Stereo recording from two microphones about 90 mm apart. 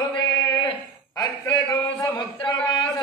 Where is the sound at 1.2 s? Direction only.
45° left (ahead or behind).